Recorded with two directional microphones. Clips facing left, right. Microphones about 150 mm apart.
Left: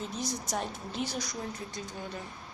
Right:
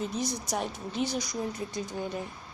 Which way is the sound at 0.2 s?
Centre (ahead or behind).